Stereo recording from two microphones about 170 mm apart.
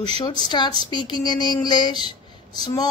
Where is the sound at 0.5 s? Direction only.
25° left (ahead or behind).